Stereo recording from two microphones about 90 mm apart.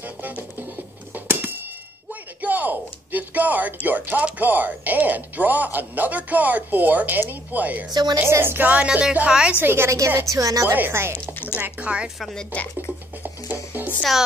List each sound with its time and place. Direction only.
0.0 s music: 20° right (ahead or behind)
1.1 s a sound: 20° right (ahead or behind)
2.0 s speech: 20° right (ahead or behind)
7.9 s a woman's voice: 50° right (ahead or behind)
8.2 s a woman's voice: 25° right (ahead or behind)
9.6 s a woman's voice: 25° right (ahead or behind); by 10.7 s 40° right (ahead or behind)
10.7 s speech: 25° right (ahead or behind)
11.6 s a woman's voice: 15° right (ahead or behind)
12.2 s speech: centre (ahead or behind)
13.2 s music: 20° right (ahead or behind)